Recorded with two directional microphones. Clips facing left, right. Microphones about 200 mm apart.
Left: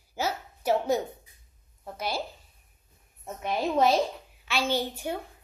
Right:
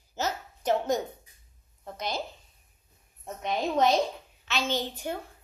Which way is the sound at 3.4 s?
5° left (ahead or behind).